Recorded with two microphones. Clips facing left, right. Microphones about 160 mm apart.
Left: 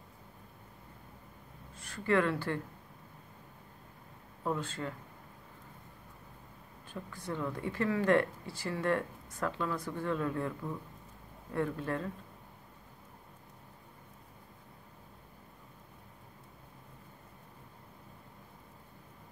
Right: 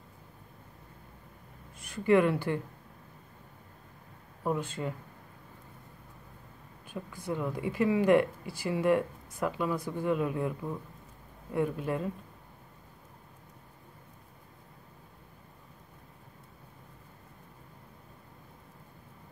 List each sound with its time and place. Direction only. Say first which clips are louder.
1.8 s speech: right 5 dB; 15° right (ahead or behind)
4.4 s speech: right 3 dB; 15° right (ahead or behind)
6.9 s speech: right 4 dB; 10° right (ahead or behind)